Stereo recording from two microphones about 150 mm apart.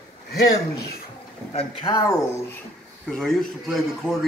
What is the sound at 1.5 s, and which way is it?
Speech, 35° left (ahead or behind).